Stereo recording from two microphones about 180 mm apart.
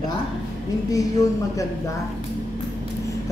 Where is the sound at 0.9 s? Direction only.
20° left (ahead or behind).